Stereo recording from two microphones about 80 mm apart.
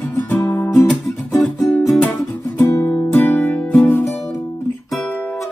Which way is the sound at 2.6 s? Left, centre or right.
Left.